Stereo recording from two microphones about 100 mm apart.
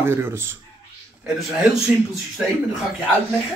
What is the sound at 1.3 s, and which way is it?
Speech, 5° right (ahead or behind).